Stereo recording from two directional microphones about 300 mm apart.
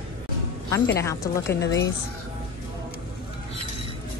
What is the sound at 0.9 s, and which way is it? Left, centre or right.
Speech, centre.